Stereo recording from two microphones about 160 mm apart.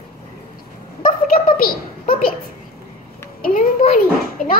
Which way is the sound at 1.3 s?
60° left (ahead or behind).